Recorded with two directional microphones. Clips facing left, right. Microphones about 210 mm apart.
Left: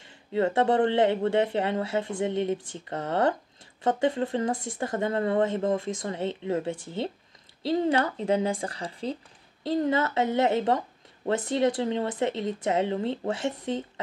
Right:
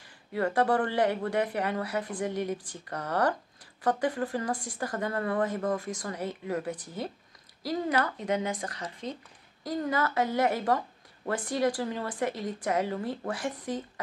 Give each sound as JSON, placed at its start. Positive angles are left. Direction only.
{"t": 0.0, "sound": "speech", "side_deg": 25}